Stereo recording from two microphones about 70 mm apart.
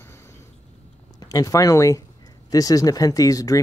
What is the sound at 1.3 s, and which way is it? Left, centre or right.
Speech, left.